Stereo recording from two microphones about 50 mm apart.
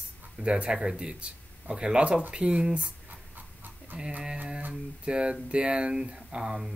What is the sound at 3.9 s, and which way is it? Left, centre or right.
Speech, right.